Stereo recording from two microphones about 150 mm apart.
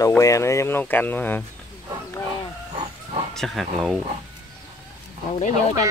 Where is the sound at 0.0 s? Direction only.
20° left (ahead or behind).